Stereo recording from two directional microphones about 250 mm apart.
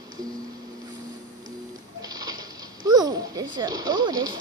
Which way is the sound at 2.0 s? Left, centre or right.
Centre.